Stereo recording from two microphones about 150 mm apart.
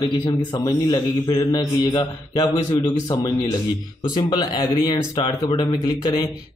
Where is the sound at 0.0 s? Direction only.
30° left (ahead or behind).